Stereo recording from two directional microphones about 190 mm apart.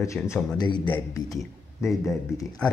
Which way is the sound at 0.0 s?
15° left (ahead or behind).